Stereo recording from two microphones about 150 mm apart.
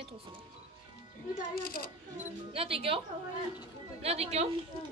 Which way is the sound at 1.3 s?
75° left (ahead or behind).